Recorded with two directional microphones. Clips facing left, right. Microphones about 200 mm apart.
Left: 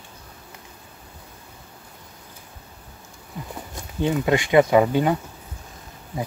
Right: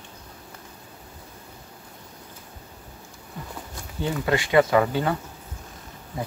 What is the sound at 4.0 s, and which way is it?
Speech, 20° left (ahead or behind).